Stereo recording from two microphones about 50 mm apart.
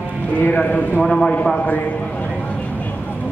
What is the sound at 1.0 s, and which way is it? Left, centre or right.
Speech, centre.